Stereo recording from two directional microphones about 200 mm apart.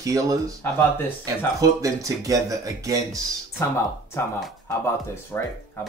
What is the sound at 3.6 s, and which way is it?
Speech, 15° left (ahead or behind).